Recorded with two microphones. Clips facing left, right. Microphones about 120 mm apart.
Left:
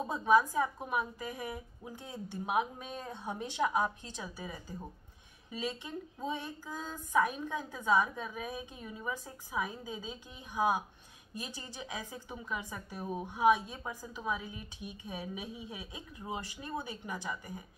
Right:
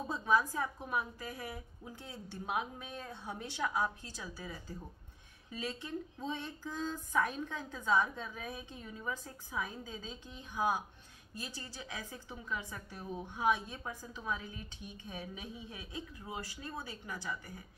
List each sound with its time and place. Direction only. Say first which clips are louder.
0.0 s a woman's voice: left 5 dB; 15° left (ahead or behind)